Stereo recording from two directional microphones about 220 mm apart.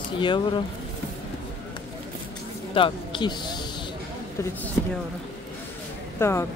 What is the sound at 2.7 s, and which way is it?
Speech, 20° left (ahead or behind).